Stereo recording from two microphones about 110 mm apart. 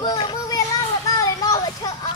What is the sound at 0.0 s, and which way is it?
Children playing, 45° left (ahead or behind).